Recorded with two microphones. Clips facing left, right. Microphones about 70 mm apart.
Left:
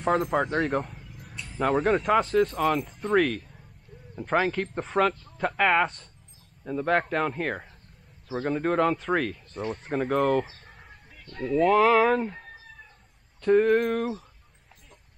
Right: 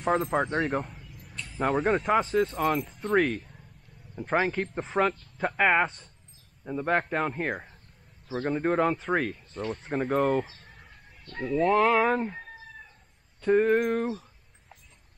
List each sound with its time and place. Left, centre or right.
0.1 s speech: centre
11.5 s speech: centre